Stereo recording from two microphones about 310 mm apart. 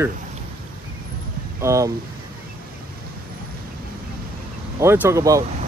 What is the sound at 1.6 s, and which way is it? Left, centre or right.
Speech, centre.